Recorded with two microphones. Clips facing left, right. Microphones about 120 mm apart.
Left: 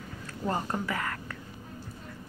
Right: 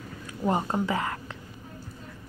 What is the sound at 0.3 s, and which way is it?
Speech, 15° right (ahead or behind).